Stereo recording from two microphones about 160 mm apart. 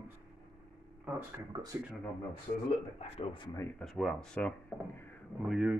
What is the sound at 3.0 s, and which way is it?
Speech, 35° left (ahead or behind).